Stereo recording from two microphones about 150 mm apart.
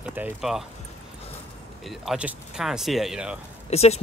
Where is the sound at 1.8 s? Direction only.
Centre (ahead or behind).